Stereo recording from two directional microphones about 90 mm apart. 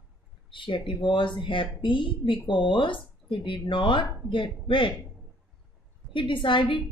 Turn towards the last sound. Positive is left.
turn(degrees=65)  # may be behind; listen again after turning